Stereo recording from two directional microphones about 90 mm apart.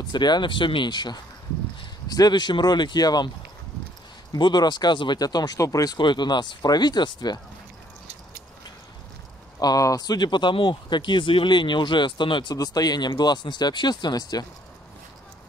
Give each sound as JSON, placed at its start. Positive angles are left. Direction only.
{"t": 0.1, "sound": "speech", "side_deg": 55}
{"t": 4.4, "sound": "speech", "side_deg": 55}
{"t": 5.9, "sound": "speech", "side_deg": 55}
{"t": 9.6, "sound": "speech", "side_deg": 45}
{"t": 12.5, "sound": "speech", "side_deg": 45}